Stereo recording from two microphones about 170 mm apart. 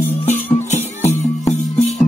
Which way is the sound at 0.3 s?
45° left (ahead or behind).